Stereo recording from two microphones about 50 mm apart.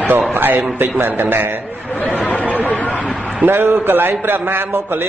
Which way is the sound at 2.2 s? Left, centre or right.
Left.